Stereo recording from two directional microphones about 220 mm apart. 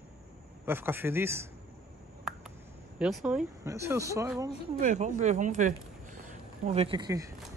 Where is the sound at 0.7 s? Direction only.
10° right (ahead or behind).